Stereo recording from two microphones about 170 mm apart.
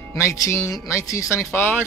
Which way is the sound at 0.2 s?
15° left (ahead or behind).